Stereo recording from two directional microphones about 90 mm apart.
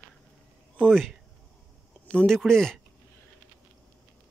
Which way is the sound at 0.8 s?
5° left (ahead or behind).